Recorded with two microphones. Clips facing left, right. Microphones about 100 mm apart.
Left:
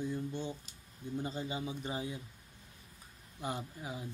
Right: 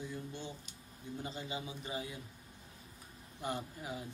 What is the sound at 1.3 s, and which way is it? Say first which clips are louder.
Speech: left 4 dB; 30° left (ahead or behind).